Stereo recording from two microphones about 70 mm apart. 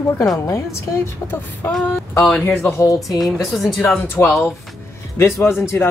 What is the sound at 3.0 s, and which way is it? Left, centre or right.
Speech, centre.